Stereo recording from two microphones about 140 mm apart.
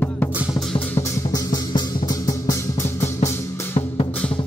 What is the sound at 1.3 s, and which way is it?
Music, 30° left (ahead or behind).